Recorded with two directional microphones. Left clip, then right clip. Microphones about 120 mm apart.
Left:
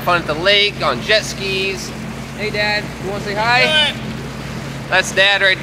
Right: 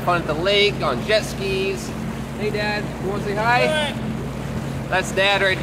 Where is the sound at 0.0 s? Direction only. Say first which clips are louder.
Left 5 dB; 20° left (ahead or behind).